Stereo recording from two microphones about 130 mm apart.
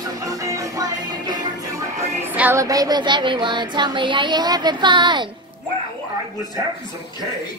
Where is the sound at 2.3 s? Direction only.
15° right (ahead or behind); by 5.3 s 35° right (ahead or behind).